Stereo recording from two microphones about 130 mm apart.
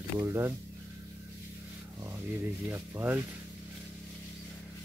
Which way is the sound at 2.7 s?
15° right (ahead or behind).